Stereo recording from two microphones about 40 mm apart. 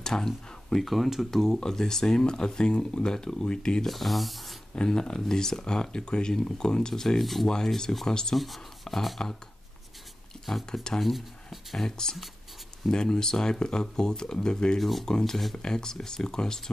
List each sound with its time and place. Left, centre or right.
0.0 s speech: centre
0.8 s speech: centre; by 3.8 s left
3.8 s speech: centre
4.7 s speech: left
10.4 s speech: centre
11.8 s speech: centre
14.8 s speech: centre
15.0 s speech: centre